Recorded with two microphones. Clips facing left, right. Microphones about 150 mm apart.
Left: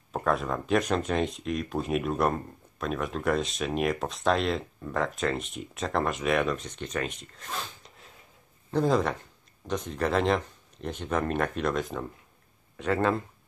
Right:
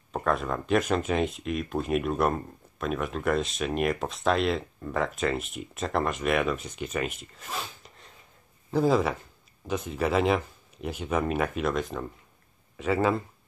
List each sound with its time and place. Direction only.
0.1 s speech: centre (ahead or behind)